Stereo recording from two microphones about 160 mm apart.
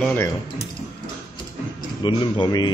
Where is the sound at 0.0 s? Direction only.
10° left (ahead or behind).